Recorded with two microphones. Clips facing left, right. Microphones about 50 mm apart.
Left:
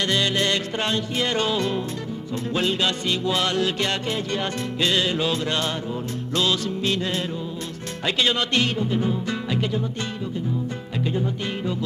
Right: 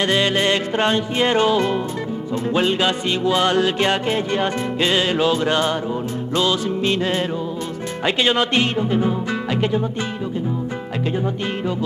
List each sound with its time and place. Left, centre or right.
0.0 s music: right